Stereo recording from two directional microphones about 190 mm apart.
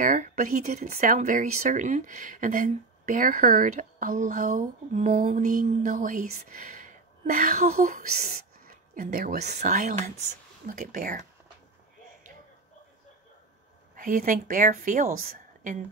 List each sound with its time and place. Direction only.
0.0 s a woman's voice: 40° right (ahead or behind)
13.9 s a woman's voice: 45° right (ahead or behind)